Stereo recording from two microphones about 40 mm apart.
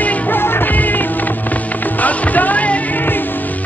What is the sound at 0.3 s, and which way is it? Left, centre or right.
Music, left.